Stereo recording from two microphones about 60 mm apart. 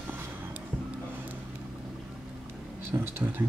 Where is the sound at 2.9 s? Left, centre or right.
Right.